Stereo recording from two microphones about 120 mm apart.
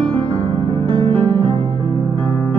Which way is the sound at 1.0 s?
45° right (ahead or behind).